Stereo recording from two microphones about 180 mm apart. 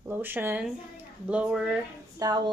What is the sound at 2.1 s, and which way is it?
Speech, 20° right (ahead or behind).